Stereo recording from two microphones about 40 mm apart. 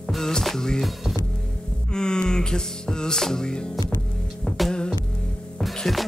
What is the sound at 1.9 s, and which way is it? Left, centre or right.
Music, centre.